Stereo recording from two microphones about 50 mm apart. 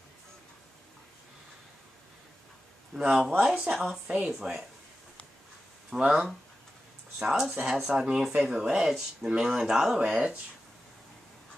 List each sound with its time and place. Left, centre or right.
2.9 s speech: centre
3.7 s speech: centre
5.9 s speech: centre